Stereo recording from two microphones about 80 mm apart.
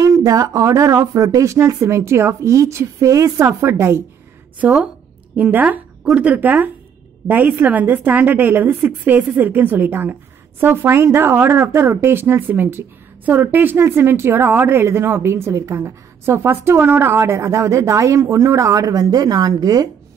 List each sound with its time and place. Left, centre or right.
0.0 s speech: right
4.6 s a woman's voice: centre; by 19.9 s right